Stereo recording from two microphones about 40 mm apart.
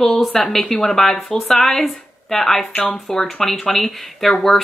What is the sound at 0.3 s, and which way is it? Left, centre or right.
A woman's voice, centre.